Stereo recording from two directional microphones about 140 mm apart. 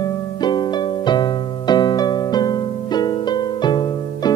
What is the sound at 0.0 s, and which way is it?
Music, 30° left (ahead or behind).